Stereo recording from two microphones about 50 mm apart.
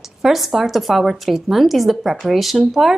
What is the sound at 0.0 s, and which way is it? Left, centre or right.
Speech, centre.